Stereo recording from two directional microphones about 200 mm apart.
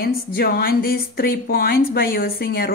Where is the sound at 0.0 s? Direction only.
50° left (ahead or behind).